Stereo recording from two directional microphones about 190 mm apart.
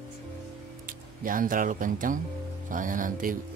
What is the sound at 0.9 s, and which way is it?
Speech, 45° right (ahead or behind).